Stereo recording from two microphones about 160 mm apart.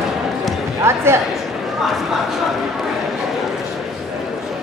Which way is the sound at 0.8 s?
15° right (ahead or behind).